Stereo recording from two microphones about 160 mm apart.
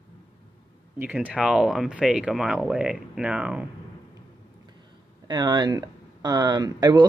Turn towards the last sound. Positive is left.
turn(degrees=-25)  # may be behind; listen again after turning